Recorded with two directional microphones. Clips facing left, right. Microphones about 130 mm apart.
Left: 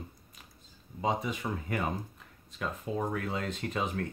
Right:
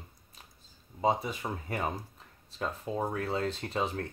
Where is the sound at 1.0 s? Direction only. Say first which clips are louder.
Right 2 dB; 35° right (ahead or behind).